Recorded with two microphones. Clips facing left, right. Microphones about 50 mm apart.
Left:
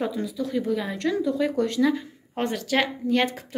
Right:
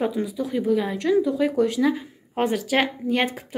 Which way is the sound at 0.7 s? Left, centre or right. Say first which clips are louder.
Right 4 dB; centre.